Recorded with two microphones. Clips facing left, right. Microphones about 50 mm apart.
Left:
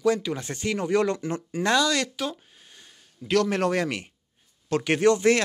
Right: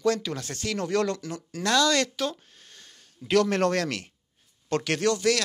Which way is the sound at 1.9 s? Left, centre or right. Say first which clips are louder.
Right 1 dB; centre.